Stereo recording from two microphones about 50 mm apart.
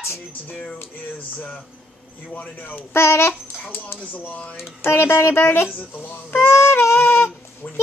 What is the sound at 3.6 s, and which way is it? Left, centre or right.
Speech, left.